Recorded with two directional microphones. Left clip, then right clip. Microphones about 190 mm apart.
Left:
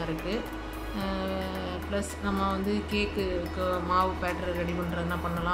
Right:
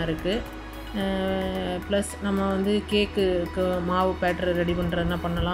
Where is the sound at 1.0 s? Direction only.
15° right (ahead or behind).